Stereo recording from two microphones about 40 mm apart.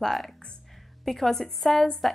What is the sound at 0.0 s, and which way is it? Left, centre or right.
A woman's voice, centre.